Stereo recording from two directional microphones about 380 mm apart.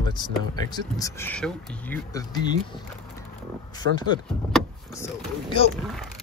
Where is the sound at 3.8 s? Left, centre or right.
Right.